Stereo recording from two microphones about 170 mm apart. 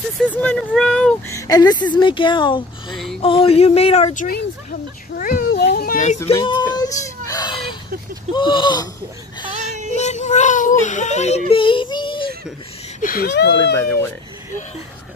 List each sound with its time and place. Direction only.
0.2 s speech: 10° left (ahead or behind)
1.2 s a woman's voice: 20° left (ahead or behind); by 5.5 s 55° left (ahead or behind)
5.5 s a sound: 70° left (ahead or behind)
6.4 s whimper: 25° left (ahead or behind)
8.3 s speech: 25° left (ahead or behind)
9.5 s child singing: 45° right (ahead or behind)
9.9 s a sound: 45° left (ahead or behind)
13.0 s speech: 60° left (ahead or behind); by 13.6 s 90° left
13.7 s speech: 15° left (ahead or behind)